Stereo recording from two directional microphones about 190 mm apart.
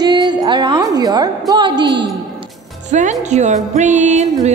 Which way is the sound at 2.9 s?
40° right (ahead or behind).